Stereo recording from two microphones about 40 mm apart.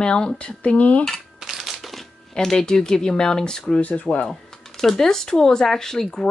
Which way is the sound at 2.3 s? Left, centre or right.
Centre.